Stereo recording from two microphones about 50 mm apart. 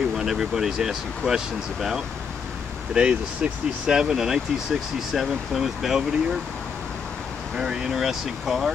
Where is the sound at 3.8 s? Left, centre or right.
Centre.